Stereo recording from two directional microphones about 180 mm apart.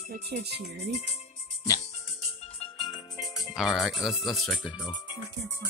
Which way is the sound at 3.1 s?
20° left (ahead or behind).